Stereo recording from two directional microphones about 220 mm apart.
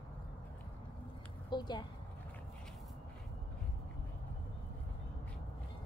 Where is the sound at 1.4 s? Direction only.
20° left (ahead or behind).